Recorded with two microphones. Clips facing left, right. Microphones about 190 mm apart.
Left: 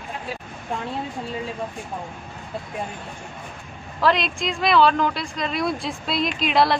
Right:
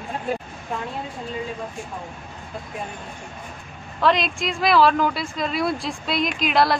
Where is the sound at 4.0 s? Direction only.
Centre (ahead or behind).